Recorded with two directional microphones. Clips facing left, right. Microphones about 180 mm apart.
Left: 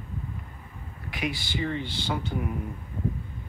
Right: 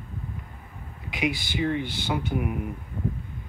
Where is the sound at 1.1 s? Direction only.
15° right (ahead or behind).